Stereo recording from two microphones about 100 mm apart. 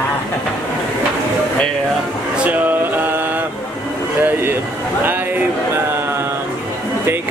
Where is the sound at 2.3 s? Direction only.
15° right (ahead or behind).